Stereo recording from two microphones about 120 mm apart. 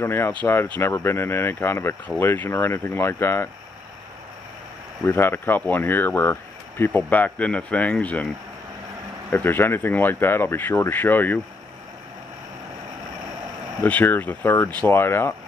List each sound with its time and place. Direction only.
0.0 s speech: 20° left (ahead or behind)
5.0 s speech: 20° left (ahead or behind)
9.3 s speech: 15° left (ahead or behind)
13.8 s speech: 15° left (ahead or behind)